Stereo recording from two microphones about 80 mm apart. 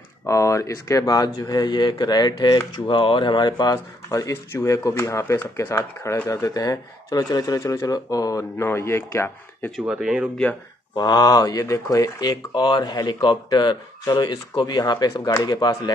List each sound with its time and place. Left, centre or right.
0.3 s speech: left
1.0 s speech: left
2.7 s speech: left
6.2 s speech: left
7.6 s speech: left
7.9 s speech: left
8.5 s speech: left
9.8 s speech: centre
11.0 s speech: left
11.4 s speech: left
12.2 s speech: left